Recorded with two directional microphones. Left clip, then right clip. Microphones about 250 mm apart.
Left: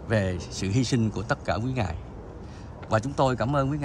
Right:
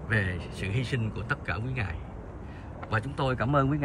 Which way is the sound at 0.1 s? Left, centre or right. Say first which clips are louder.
Left 3 dB; centre.